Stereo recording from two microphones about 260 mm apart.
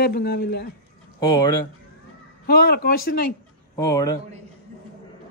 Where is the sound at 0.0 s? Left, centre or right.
Left.